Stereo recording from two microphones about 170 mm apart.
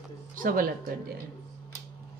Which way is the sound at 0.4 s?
55° right (ahead or behind).